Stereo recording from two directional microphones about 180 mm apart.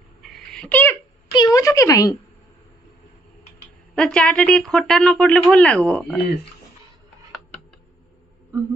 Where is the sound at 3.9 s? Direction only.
5° left (ahead or behind).